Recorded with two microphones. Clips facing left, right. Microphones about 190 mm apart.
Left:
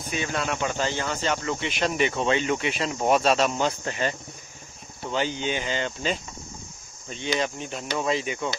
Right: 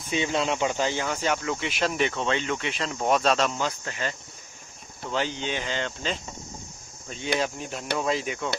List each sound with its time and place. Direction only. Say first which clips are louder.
0.1 s speech: right 3 dB; 25° right (ahead or behind); by 3.5 s 10° left (ahead or behind)
3.5 s speech: left 4 dB; 20° left (ahead or behind)
5.0 s speech: left 2 dB; 5° left (ahead or behind)
7.3 s speech: right 1 dB; 5° right (ahead or behind)